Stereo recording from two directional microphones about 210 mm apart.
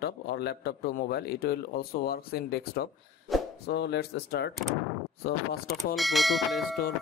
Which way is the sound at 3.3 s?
Centre (ahead or behind).